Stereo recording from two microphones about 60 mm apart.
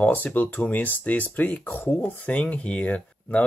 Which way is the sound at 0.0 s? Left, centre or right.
Left.